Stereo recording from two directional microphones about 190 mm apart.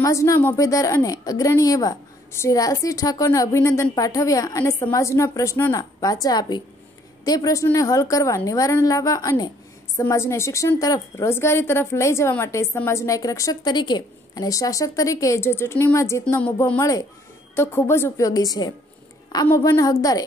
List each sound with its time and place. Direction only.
0.0 s a woman's voice: 15° left (ahead or behind)